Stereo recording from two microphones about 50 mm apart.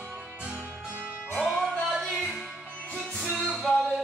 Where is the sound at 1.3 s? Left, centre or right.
Centre.